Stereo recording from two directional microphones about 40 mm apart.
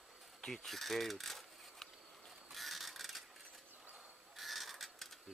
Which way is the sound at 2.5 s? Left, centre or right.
Centre.